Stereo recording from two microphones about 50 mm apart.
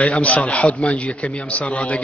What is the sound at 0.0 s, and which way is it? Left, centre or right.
A man's voice, left.